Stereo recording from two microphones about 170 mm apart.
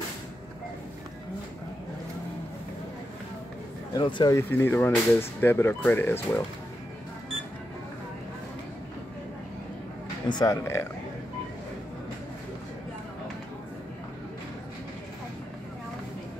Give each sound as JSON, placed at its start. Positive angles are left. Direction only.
{"t": 3.9, "sound": "speech", "side_deg": 25}
{"t": 10.2, "sound": "speech", "side_deg": 25}